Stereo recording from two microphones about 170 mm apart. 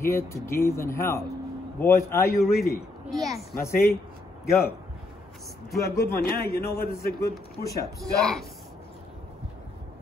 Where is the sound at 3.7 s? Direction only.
60° left (ahead or behind).